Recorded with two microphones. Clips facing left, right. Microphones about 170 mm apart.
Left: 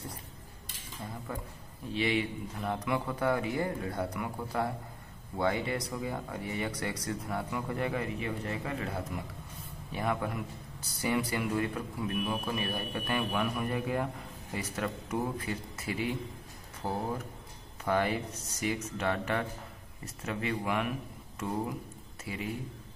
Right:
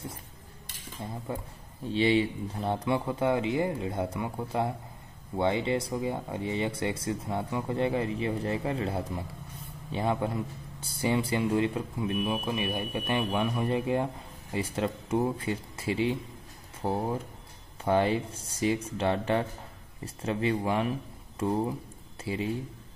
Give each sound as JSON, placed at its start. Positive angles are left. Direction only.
{"t": 1.3, "sound": "a man's voice", "side_deg": -25}